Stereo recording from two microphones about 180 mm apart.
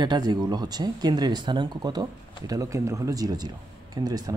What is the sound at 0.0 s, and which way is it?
Speech, 25° right (ahead or behind).